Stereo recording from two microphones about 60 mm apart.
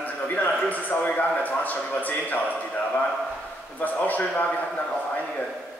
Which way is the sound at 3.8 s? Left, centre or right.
Left.